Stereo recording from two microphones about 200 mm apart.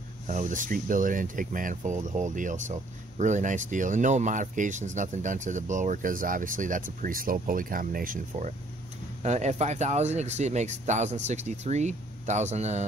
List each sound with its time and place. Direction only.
0.3 s speech: 40° right (ahead or behind)